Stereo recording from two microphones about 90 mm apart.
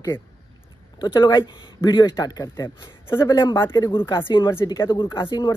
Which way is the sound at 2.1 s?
40° left (ahead or behind).